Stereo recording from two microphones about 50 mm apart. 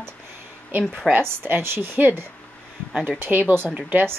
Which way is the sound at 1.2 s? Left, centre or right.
Right.